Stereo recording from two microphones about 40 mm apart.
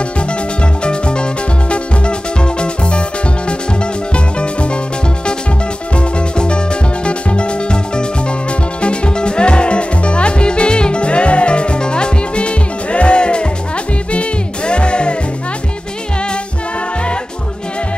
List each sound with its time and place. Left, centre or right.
0.8 s music: left
4.1 s music: left
5.9 s music: left
14.7 s music: left